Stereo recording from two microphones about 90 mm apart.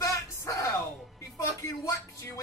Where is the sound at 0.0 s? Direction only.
40° left (ahead or behind).